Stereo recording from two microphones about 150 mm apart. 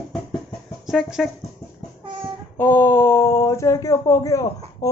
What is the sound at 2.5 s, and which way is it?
Speech, 15° left (ahead or behind).